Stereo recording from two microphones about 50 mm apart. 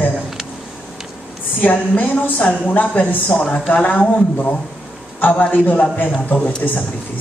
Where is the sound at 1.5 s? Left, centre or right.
Left.